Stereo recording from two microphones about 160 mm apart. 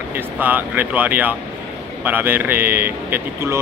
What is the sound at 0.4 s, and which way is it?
Speech, 10° right (ahead or behind).